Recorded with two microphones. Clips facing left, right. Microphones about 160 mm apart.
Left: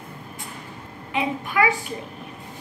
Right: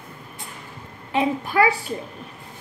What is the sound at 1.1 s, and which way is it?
Speech, 35° right (ahead or behind).